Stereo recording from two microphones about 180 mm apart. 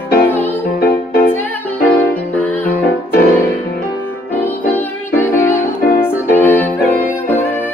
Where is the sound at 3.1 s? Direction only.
55° left (ahead or behind).